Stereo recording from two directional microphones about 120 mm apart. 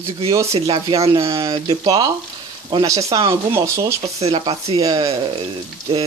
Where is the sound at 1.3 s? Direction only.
25° right (ahead or behind).